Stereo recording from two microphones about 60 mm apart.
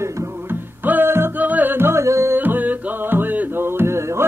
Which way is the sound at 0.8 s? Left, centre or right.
Right.